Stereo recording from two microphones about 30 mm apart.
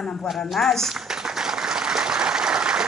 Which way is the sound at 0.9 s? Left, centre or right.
Centre.